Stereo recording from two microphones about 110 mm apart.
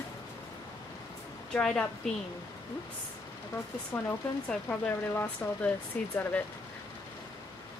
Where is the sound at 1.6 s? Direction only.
5° left (ahead or behind).